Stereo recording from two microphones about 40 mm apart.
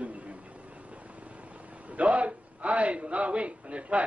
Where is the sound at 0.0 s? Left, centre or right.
Right.